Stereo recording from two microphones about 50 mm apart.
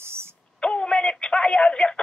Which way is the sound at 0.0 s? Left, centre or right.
Right.